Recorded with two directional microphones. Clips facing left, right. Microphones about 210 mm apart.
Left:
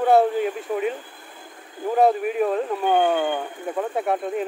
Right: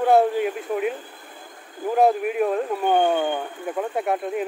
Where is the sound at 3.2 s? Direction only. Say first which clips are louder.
Even; 10° left (ahead or behind).